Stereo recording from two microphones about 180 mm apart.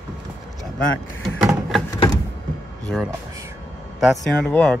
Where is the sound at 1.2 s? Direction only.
Centre (ahead or behind).